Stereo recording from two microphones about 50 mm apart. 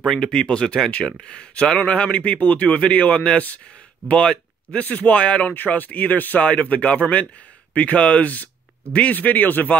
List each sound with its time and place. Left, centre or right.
0.0 s speech: centre
4.7 s speech: left
5.5 s speech: left